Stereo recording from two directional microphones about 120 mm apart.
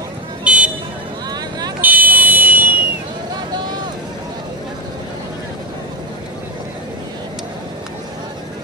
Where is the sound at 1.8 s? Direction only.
15° right (ahead or behind).